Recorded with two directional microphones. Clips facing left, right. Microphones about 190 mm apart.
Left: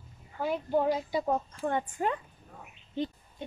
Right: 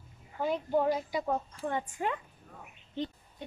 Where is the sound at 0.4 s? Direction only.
10° left (ahead or behind).